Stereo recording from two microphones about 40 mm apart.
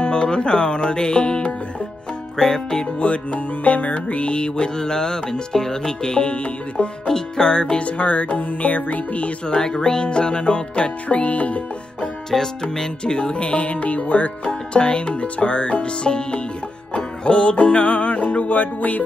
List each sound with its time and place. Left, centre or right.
0.0 s music: left
7.1 s music: centre
7.8 s music: left
9.5 s music: left
12.7 s music: left
14.4 s music: left